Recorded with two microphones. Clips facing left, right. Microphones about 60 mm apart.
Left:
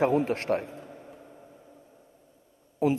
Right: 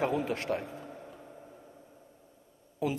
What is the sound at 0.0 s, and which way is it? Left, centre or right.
Speech, left.